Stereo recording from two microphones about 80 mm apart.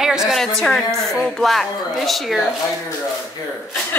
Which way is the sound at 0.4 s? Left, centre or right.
Centre.